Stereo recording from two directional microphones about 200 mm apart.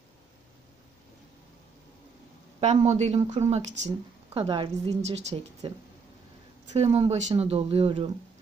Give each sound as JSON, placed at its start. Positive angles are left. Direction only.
{"t": 2.6, "sound": "a woman's voice", "side_deg": -35}